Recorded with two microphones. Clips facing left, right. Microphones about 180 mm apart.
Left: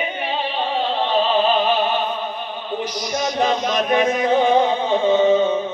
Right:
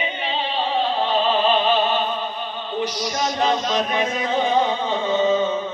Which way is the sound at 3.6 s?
55° left (ahead or behind).